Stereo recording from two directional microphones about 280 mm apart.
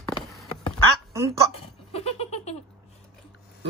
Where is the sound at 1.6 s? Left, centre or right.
Left.